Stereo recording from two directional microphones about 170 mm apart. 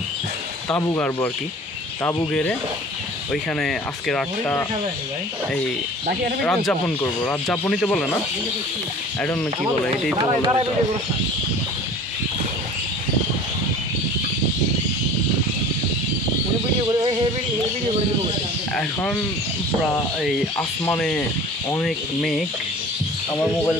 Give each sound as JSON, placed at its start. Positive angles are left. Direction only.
{"t": 0.7, "sound": "speech", "side_deg": 15}
{"t": 3.5, "sound": "speech", "side_deg": 5}
{"t": 6.4, "sound": "speech", "side_deg": 5}
{"t": 10.2, "sound": "speech", "side_deg": -25}
{"t": 16.8, "sound": "a sound", "side_deg": -30}
{"t": 20.5, "sound": "speech", "side_deg": 15}
{"t": 21.8, "sound": "speech", "side_deg": 0}